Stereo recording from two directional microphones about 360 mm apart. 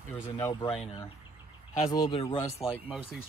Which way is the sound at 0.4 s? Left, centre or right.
Centre.